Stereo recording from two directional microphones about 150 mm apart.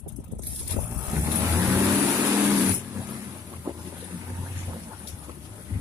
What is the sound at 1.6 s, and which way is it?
Vehicle, 15° right (ahead or behind).